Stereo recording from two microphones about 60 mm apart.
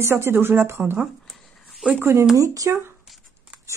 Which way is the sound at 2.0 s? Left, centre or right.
Right.